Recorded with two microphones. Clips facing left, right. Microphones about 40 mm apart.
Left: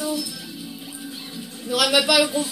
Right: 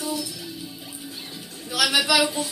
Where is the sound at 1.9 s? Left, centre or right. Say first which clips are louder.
Left 2 dB; left.